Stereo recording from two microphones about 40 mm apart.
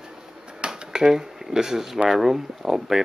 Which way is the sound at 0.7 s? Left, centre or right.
Centre.